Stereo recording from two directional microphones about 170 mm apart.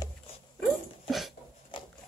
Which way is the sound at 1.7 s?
30° left (ahead or behind).